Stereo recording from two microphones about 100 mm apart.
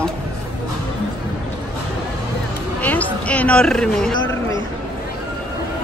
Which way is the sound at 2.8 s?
15° left (ahead or behind).